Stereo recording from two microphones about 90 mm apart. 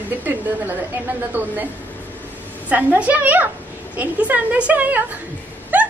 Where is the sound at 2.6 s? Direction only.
15° right (ahead or behind).